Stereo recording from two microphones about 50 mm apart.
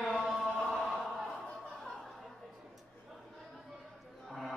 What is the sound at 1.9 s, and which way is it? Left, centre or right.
Chatter, centre.